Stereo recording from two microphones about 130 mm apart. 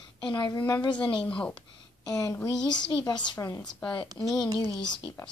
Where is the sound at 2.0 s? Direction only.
25° left (ahead or behind).